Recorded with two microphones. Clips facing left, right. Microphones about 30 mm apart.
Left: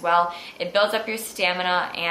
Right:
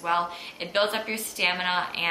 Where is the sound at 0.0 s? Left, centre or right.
Centre.